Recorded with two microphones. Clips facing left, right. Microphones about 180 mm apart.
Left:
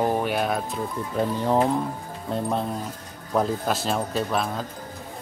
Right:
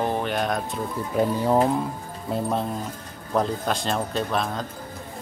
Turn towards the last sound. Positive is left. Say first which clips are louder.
# even
turn(degrees=5)  # may be behind; listen again after turning